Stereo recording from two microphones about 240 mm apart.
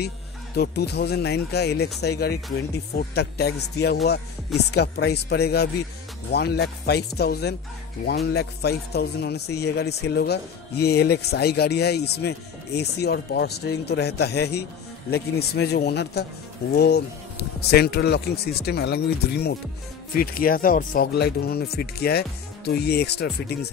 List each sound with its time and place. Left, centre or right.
0.6 s a man's voice: left